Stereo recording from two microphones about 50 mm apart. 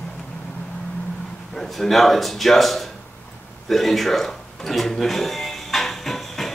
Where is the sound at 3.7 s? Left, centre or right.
Centre.